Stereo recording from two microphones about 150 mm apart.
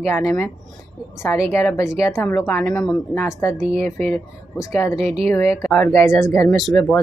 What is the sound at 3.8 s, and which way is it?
Speech, 45° right (ahead or behind).